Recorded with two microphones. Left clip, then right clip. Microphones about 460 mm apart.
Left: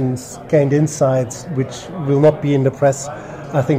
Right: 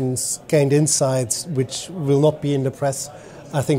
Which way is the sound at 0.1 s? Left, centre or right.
Right.